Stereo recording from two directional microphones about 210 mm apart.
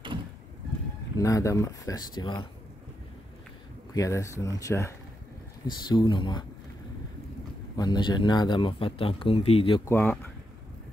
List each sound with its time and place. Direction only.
1.1 s speech: 15° left (ahead or behind)
3.9 s speech: 15° left (ahead or behind)
7.7 s speech: 20° left (ahead or behind)
9.8 s speech: 10° left (ahead or behind)